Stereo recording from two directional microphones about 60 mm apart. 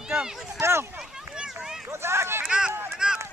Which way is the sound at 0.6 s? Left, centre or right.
Right.